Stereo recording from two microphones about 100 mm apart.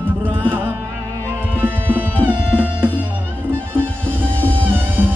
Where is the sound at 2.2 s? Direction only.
15° right (ahead or behind).